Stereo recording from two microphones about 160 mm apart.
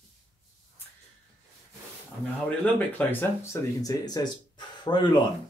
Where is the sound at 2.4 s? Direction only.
10° left (ahead or behind); by 5.1 s 30° left (ahead or behind).